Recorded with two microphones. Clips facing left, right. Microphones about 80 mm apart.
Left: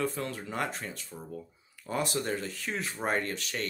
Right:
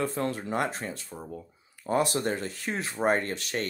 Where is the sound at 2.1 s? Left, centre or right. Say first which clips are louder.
Right 3 dB; right.